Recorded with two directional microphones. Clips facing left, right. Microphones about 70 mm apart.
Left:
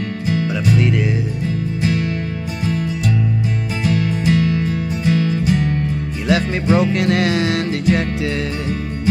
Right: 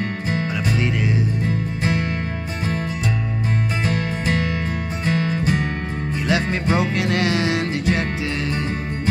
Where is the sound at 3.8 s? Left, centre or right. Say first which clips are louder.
Left 4 dB; right.